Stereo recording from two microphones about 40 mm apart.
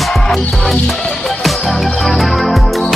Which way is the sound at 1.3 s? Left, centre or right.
Centre.